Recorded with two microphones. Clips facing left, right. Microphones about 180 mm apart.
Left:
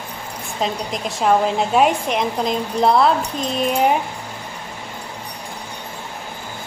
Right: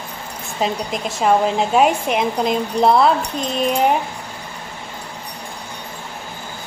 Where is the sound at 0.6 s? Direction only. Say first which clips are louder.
Right 2 dB; centre (ahead or behind).